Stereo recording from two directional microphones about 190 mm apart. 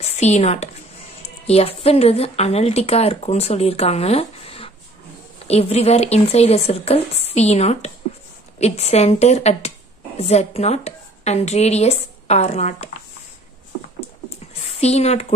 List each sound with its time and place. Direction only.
0.0 s a woman's voice: 35° left (ahead or behind)
14.7 s a woman's voice: 35° left (ahead or behind)